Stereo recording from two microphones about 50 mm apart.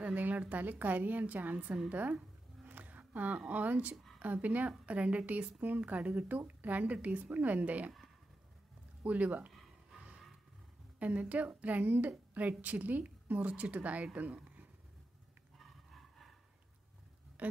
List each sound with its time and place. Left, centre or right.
0.0 s a woman's voice: right
2.6 s a sound: right
4.2 s a woman's voice: right
9.0 s a woman's voice: right
11.0 s a woman's voice: right
17.4 s speech: right